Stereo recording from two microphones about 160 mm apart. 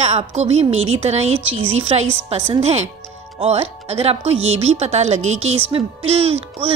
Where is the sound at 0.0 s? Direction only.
45° right (ahead or behind).